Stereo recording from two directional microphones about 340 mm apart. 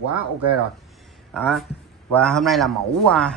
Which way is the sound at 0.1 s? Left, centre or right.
Right.